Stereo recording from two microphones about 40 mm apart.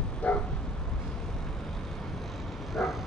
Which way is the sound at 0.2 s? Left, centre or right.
Left.